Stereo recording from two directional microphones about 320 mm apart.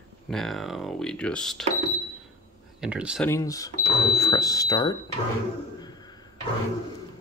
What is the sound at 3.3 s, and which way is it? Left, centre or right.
Speech, centre.